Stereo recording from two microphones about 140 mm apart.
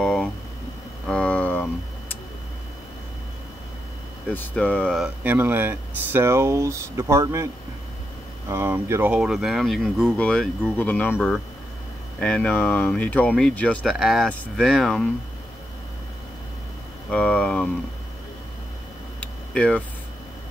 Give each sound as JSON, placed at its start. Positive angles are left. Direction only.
{"t": 0.0, "sound": "a sound", "side_deg": 5}
{"t": 4.3, "sound": "speech", "side_deg": 10}
{"t": 5.0, "sound": "speech", "side_deg": -15}
{"t": 8.5, "sound": "speech", "side_deg": -15}
{"t": 9.1, "sound": "speech", "side_deg": -5}
{"t": 11.1, "sound": "speech", "side_deg": 0}
{"t": 13.9, "sound": "speech", "side_deg": -5}
{"t": 17.1, "sound": "vehicle", "side_deg": 10}
{"t": 19.1, "sound": "tick-tock", "side_deg": 10}